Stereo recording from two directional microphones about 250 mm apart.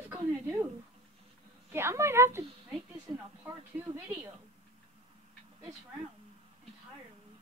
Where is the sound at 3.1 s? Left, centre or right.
Centre.